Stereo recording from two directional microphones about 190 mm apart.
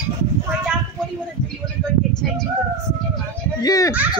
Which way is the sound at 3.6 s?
20° left (ahead or behind).